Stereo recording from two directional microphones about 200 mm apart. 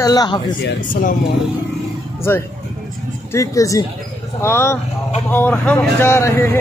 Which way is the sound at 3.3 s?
15° left (ahead or behind).